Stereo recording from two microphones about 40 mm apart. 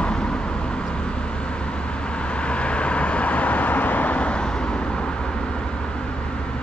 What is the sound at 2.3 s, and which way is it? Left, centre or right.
Vehicle, left.